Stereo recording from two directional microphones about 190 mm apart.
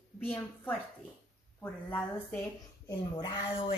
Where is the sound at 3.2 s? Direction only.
25° left (ahead or behind).